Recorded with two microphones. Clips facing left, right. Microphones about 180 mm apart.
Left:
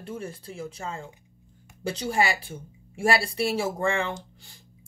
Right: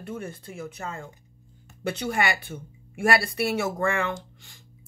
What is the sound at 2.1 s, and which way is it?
Speech, 30° left (ahead or behind).